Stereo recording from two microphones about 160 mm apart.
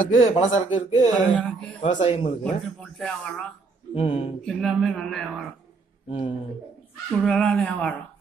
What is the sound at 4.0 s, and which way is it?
Speech, 30° left (ahead or behind).